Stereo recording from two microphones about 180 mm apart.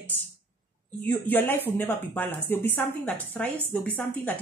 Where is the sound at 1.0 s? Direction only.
10° left (ahead or behind).